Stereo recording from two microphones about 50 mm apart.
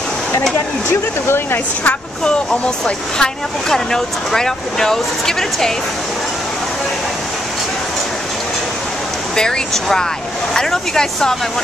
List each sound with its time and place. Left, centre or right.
1.2 s speech: left
3.2 s speech: centre
9.3 s speech: centre